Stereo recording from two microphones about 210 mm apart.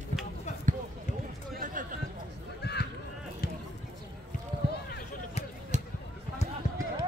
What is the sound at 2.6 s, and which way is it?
Run, 50° left (ahead or behind).